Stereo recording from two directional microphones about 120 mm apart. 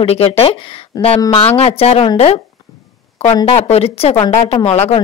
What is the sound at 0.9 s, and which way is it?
Speech, 30° left (ahead or behind).